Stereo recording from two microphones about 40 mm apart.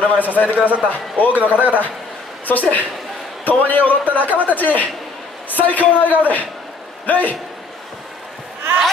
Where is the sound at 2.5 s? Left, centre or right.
Left.